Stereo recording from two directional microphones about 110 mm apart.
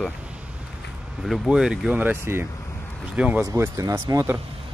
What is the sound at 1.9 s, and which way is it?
Speech, 20° right (ahead or behind).